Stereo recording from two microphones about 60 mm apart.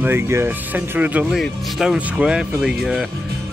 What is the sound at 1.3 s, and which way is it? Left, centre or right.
Speech, centre.